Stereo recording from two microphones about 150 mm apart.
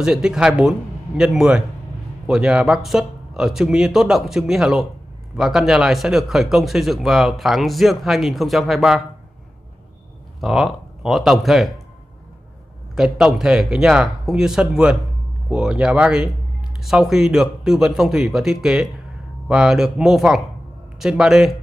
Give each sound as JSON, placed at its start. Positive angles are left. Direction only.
{"t": 0.0, "sound": "speech", "side_deg": -5}
{"t": 10.4, "sound": "speech", "side_deg": 0}
{"t": 12.9, "sound": "speech", "side_deg": -5}